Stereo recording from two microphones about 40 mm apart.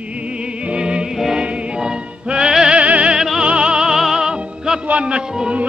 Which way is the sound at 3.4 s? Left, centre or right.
Right.